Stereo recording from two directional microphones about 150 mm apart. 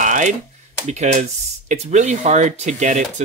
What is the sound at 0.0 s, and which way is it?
Computer keyboard, 55° right (ahead or behind).